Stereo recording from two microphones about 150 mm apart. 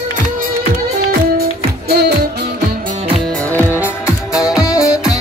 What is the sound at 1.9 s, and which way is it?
Music, 90° right.